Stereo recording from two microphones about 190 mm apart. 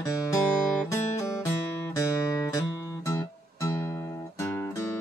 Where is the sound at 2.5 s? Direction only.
15° left (ahead or behind).